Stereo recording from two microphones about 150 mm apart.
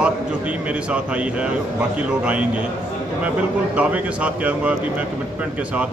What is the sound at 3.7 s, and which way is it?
Speech, 10° right (ahead or behind).